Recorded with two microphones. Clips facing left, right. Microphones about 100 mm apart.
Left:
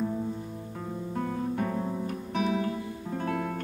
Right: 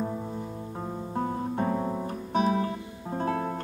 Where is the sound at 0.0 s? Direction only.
30° right (ahead or behind).